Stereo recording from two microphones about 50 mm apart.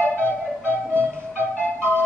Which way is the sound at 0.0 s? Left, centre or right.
Left.